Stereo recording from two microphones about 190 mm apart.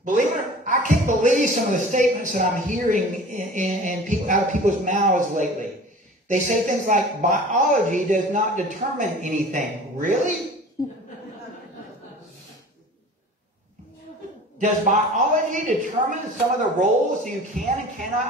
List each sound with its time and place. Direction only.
0.0 s a man's voice: 40° right (ahead or behind)
14.6 s a man's voice: 40° right (ahead or behind)